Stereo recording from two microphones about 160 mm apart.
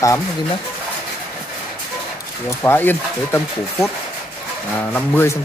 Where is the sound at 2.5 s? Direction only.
15° left (ahead or behind).